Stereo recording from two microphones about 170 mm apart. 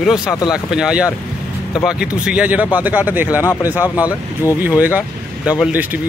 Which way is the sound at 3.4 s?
15° left (ahead or behind).